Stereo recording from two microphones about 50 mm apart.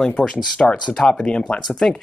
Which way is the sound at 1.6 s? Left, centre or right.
Centre.